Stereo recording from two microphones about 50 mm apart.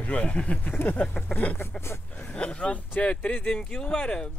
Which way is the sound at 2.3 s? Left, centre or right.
Centre.